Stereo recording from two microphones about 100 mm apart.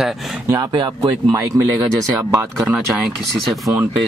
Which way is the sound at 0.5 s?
35° right (ahead or behind).